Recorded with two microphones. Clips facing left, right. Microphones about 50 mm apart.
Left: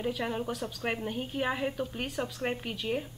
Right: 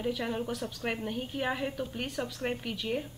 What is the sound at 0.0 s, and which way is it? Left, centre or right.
A woman's voice, centre.